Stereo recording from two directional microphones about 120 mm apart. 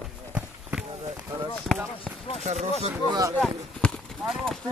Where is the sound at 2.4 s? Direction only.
65° right (ahead or behind).